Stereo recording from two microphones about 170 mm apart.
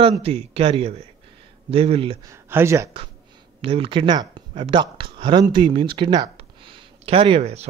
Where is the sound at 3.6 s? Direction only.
35° right (ahead or behind).